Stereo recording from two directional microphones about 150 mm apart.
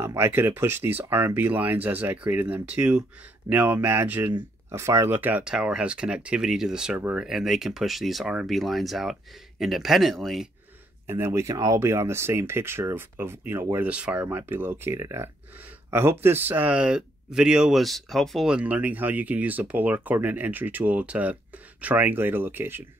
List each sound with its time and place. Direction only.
0.0 s speech: 15° right (ahead or behind); by 10.5 s centre (ahead or behind)
11.1 s speech: 15° right (ahead or behind)